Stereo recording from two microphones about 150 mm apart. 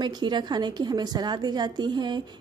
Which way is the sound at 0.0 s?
30° right (ahead or behind).